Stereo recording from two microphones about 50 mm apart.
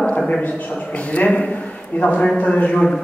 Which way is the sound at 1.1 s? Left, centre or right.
Left.